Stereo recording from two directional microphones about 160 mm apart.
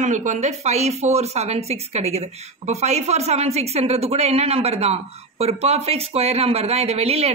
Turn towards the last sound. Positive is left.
turn(degrees=-40)  # may be behind; listen again after turning